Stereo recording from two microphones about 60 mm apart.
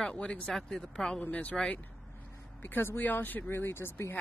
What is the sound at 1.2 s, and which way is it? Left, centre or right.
Speech, left.